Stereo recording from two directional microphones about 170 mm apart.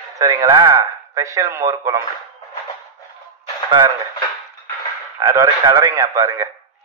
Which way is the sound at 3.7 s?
25° right (ahead or behind).